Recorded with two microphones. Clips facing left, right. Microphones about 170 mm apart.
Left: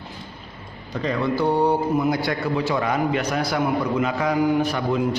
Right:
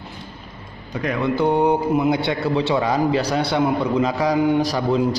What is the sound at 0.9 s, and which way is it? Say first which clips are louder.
A man's voice: right 2 dB; 15° right (ahead or behind).